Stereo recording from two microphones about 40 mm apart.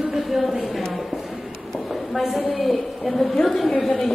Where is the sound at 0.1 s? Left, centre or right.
Centre.